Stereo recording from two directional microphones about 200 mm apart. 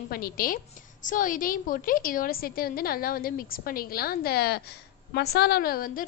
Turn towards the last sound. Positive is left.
turn(degrees=45)  # may be behind; listen again after turning